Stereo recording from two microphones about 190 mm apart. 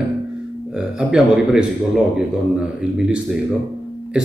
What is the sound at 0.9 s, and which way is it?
Speech, 5° right (ahead or behind).